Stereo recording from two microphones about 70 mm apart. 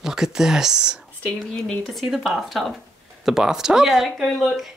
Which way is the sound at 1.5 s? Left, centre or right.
Centre.